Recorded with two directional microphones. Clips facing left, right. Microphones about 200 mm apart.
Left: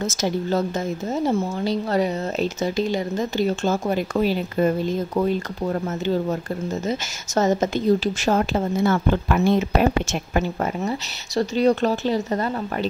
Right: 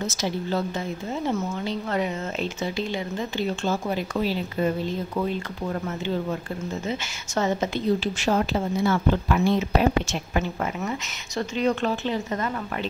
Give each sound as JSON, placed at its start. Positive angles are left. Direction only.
{"t": 0.0, "sound": "a woman's voice", "side_deg": 45}
{"t": 6.9, "sound": "speech", "side_deg": 40}
{"t": 10.8, "sound": "a woman's voice", "side_deg": 35}